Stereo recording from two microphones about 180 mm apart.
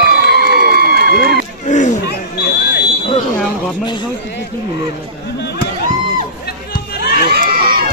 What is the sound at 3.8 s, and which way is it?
Speech, 25° left (ahead or behind).